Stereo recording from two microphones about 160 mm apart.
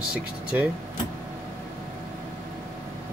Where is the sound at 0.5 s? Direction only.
10° right (ahead or behind).